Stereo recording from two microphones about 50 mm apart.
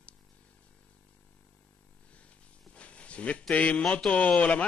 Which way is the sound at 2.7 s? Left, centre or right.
Left.